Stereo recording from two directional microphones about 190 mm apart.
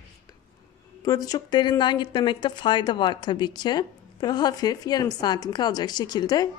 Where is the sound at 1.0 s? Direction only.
20° left (ahead or behind).